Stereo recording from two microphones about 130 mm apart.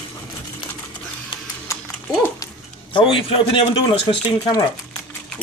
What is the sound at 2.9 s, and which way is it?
A man's voice, 40° left (ahead or behind).